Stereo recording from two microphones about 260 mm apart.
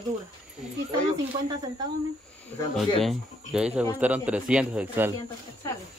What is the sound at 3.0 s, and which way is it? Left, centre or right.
Speech, centre.